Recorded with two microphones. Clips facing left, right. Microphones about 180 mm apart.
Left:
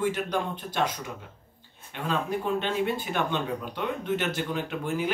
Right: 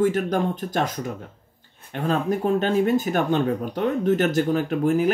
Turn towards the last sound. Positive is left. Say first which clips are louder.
# right 9 dB
turn(degrees=-40)  # may be behind; listen again after turning